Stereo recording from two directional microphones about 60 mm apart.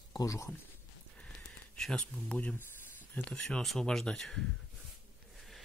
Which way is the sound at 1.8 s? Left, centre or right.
Centre.